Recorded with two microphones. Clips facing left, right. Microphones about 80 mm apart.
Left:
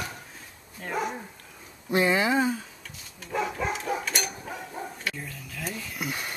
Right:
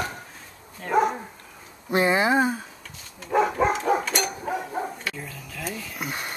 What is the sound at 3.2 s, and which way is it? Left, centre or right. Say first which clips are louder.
Dog: right 8 dB; right.